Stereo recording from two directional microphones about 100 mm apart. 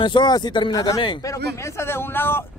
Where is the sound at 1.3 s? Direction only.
25° left (ahead or behind).